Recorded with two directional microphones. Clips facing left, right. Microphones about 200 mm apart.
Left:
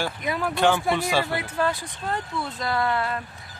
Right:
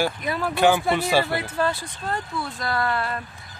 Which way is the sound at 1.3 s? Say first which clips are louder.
Right 1 dB; 15° left (ahead or behind).